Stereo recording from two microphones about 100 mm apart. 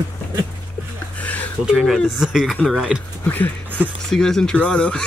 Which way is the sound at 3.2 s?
15° left (ahead or behind).